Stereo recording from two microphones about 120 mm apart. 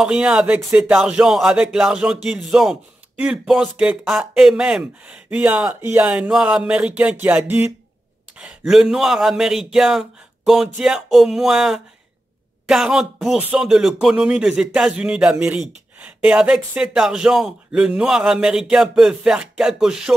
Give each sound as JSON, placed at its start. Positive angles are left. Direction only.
{"t": 0.0, "sound": "speech", "side_deg": -5}
{"t": 5.8, "sound": "speech", "side_deg": -20}
{"t": 8.4, "sound": "speech", "side_deg": -5}